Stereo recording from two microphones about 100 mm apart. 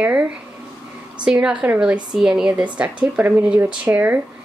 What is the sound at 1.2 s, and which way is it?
A woman's voice, 10° right (ahead or behind).